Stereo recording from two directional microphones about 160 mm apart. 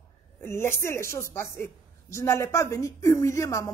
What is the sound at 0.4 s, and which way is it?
A woman's voice, 15° left (ahead or behind).